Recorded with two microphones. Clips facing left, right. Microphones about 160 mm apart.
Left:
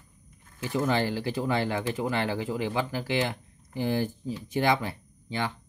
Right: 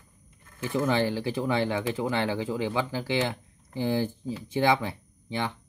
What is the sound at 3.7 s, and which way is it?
Speech, 15° right (ahead or behind).